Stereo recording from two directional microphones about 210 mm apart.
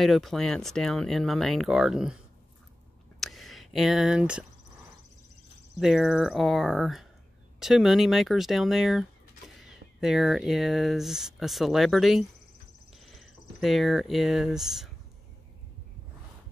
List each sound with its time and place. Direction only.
0.0 s speech: centre (ahead or behind)
3.2 s a sound: centre (ahead or behind)
5.8 s speech: centre (ahead or behind)